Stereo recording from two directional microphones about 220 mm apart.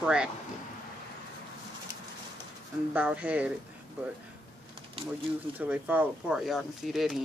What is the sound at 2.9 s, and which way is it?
Speech, 5° right (ahead or behind).